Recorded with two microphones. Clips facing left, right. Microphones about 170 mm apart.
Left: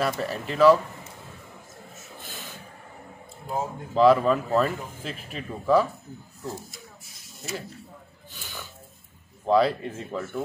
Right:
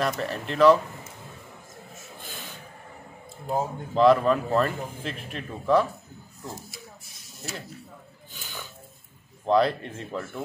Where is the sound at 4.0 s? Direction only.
Centre (ahead or behind).